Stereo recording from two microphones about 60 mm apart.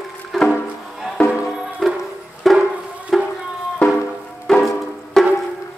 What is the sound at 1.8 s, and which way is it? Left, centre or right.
Music, centre.